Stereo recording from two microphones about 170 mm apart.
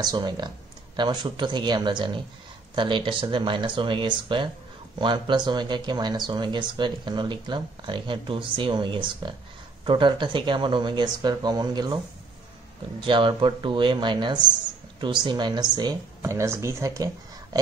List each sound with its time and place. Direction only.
0.0 s speech: 25° right (ahead or behind)
13.0 s speech: 30° right (ahead or behind)